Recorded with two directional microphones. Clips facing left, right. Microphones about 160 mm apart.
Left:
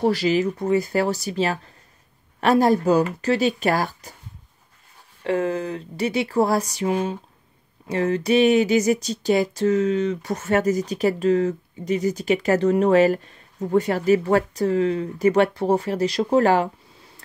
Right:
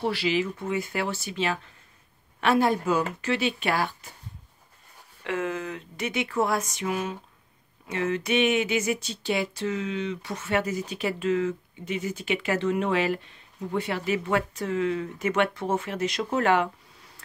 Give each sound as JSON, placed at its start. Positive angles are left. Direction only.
{"t": 0.0, "sound": "speech", "side_deg": 40}
{"t": 5.2, "sound": "speech", "side_deg": 35}